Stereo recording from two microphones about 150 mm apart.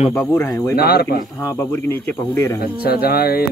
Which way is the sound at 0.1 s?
15° left (ahead or behind).